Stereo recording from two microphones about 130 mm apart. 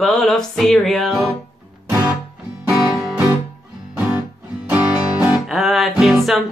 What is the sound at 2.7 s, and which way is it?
Music, 10° right (ahead or behind).